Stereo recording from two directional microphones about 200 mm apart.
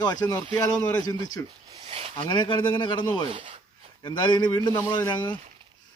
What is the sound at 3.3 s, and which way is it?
Speech, 25° right (ahead or behind).